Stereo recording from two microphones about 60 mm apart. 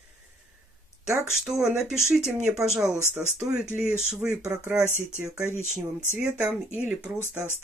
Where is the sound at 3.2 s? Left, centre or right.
Right.